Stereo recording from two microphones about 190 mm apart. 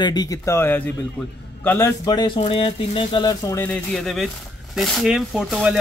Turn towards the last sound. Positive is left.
turn(degrees=0)  # may be behind; listen again after turning